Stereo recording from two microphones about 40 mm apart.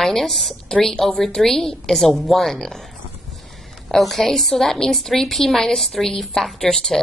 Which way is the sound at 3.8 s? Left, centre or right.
Centre.